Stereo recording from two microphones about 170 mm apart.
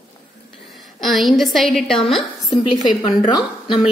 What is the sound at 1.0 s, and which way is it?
A woman's voice, centre (ahead or behind).